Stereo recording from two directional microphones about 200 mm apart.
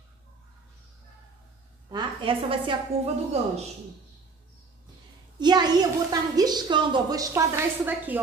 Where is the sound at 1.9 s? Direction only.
25° right (ahead or behind).